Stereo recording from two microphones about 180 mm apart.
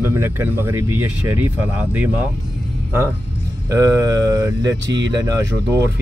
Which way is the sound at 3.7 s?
20° right (ahead or behind).